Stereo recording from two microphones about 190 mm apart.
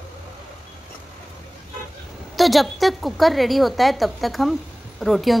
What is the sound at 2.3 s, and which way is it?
A woman's voice, centre (ahead or behind).